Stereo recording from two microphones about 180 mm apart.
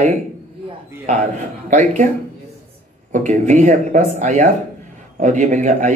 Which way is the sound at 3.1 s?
40° right (ahead or behind).